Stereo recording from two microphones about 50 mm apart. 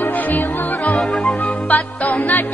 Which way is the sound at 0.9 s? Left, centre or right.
Centre.